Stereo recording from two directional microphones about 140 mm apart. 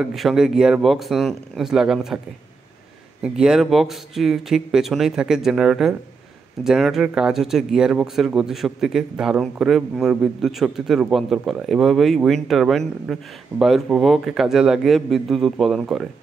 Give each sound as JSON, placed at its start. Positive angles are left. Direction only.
{"t": 0.0, "sound": "speech", "side_deg": 0}
{"t": 3.2, "sound": "speech", "side_deg": -5}